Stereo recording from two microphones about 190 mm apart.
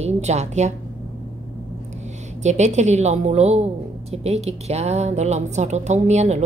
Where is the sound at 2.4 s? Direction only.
35° right (ahead or behind).